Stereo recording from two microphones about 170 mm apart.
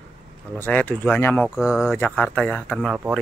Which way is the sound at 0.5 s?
10° left (ahead or behind).